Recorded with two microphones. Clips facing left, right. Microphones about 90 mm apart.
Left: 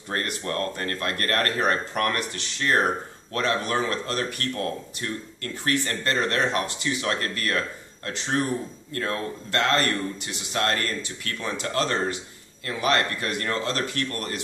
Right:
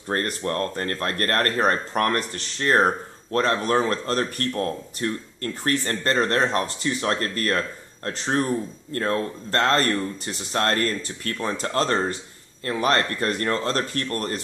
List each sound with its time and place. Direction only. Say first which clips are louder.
0.1 s speech: right 3 dB; 35° right (ahead or behind)